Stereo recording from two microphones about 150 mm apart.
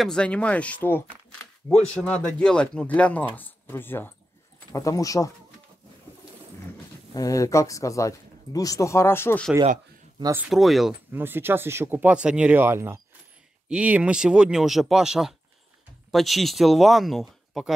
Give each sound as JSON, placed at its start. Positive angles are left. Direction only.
{"t": 0.0, "sound": "speech", "side_deg": 5}
{"t": 7.2, "sound": "speech", "side_deg": 20}
{"t": 10.5, "sound": "speech", "side_deg": 0}
{"t": 11.1, "sound": "speech", "side_deg": -15}